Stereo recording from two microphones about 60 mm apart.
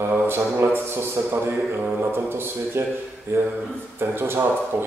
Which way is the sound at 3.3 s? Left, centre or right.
Right.